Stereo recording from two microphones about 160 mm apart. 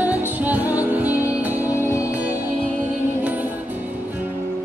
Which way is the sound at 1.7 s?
15° left (ahead or behind).